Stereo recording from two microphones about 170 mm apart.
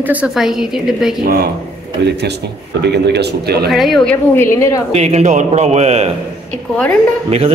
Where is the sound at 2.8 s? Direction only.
80° right.